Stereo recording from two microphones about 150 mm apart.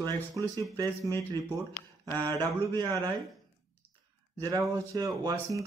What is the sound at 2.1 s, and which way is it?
Speech, 25° right (ahead or behind).